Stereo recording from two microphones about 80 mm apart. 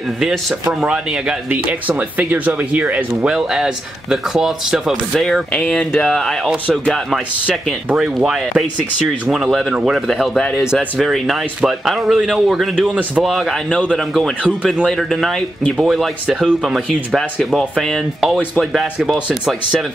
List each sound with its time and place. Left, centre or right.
1.5 s speech: centre
3.3 s speech: centre
5.5 s speech: centre
7.4 s speech: centre
9.5 s speech: centre